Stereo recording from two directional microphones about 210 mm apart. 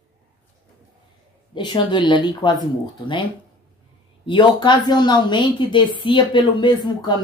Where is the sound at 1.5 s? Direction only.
20° left (ahead or behind).